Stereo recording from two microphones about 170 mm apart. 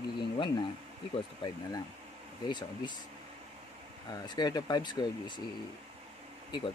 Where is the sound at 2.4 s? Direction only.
25° left (ahead or behind).